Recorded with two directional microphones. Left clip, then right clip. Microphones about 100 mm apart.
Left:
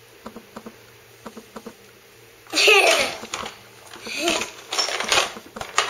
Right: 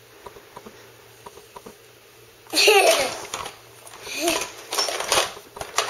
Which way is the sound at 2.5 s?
Centre (ahead or behind).